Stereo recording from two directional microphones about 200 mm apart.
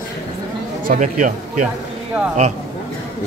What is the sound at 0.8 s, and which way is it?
Speech, 40° right (ahead or behind).